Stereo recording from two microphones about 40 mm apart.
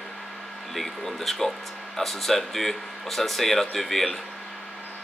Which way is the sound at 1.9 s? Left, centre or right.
Centre.